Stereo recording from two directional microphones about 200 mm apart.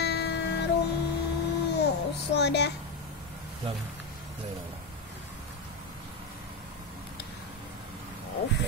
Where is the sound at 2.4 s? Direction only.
55° left (ahead or behind).